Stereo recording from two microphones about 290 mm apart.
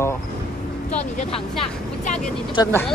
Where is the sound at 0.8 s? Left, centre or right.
Left.